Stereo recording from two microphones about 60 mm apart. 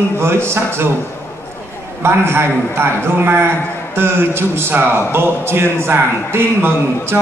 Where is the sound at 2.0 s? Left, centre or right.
Right.